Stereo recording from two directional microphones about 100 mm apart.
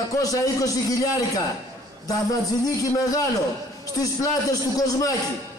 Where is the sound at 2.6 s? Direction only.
35° left (ahead or behind).